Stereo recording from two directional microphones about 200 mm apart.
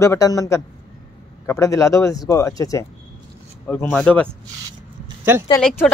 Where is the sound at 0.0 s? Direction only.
15° left (ahead or behind).